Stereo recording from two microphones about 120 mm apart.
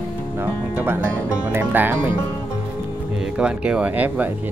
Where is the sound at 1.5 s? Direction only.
15° right (ahead or behind).